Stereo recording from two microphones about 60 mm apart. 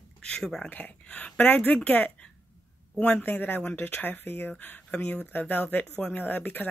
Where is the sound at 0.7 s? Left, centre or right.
Left.